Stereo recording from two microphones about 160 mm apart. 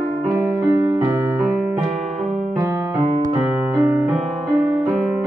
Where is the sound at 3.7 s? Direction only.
15° right (ahead or behind).